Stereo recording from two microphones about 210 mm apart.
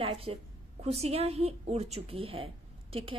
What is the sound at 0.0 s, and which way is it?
A woman's voice, 25° right (ahead or behind).